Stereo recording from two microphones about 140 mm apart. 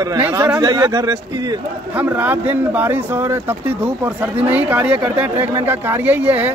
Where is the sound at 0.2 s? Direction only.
15° right (ahead or behind).